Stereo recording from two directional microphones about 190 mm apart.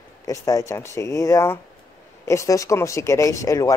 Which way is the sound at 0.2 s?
20° left (ahead or behind).